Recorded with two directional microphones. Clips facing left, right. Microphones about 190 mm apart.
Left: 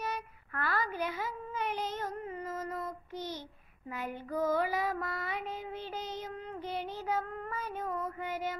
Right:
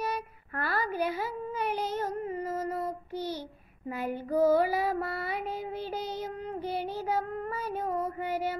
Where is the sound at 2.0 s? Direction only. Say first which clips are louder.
Right 6 dB; 35° right (ahead or behind).